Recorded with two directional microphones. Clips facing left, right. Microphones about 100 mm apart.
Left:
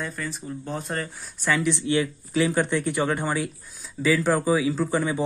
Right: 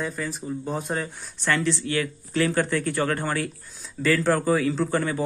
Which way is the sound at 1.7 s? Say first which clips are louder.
Left 2 dB; 20° left (ahead or behind).